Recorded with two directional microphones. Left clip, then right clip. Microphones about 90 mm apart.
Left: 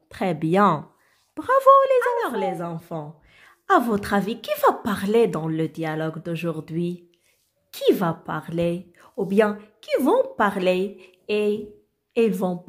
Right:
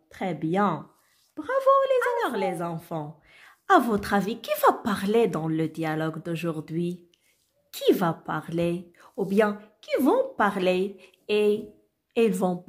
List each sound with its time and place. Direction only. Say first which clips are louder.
0.1 s speech: left 6 dB; 45° left (ahead or behind)
2.0 s a woman's voice: left 3 dB; centre (ahead or behind)
2.7 s a woman's voice: left 1 dB; 15° right (ahead or behind)